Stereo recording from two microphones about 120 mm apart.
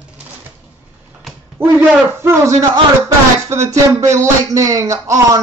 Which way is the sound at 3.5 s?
25° right (ahead or behind).